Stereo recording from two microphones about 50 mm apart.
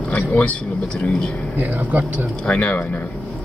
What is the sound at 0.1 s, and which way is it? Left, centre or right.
Speech, left.